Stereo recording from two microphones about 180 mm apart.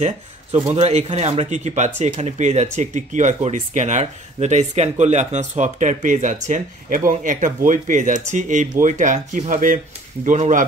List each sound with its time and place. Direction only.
0.7 s speech: 35° right (ahead or behind)